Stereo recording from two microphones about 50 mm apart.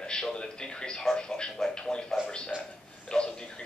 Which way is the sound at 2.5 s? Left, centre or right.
Right.